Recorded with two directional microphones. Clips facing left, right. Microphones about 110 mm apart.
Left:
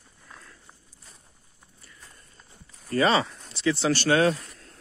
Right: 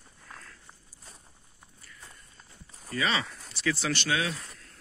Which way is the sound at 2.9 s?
35° left (ahead or behind).